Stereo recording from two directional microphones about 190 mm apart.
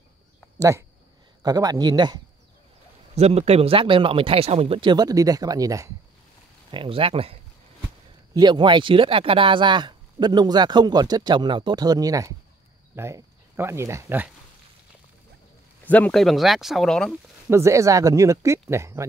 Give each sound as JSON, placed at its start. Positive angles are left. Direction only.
{"t": 0.6, "sound": "speech", "side_deg": -15}
{"t": 3.2, "sound": "speech", "side_deg": -35}
{"t": 8.4, "sound": "speech", "side_deg": -25}
{"t": 15.8, "sound": "speech", "side_deg": 10}
{"t": 17.5, "sound": "speech", "side_deg": -15}